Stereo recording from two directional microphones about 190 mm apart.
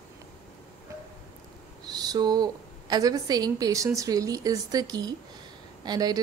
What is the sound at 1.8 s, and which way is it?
A woman's voice, 20° right (ahead or behind).